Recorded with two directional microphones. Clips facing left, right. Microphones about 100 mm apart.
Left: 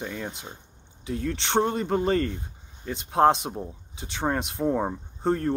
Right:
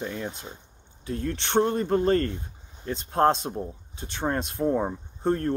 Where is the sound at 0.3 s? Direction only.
15° left (ahead or behind).